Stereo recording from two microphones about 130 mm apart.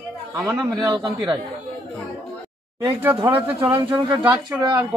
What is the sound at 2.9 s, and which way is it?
Speech, 15° right (ahead or behind).